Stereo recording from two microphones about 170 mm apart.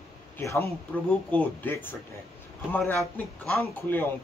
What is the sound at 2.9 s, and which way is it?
Speech, 5° left (ahead or behind).